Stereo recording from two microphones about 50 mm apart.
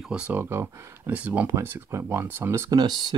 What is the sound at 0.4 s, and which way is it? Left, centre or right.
Speech, right.